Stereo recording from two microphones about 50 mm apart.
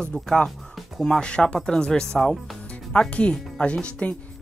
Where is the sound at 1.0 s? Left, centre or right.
Centre.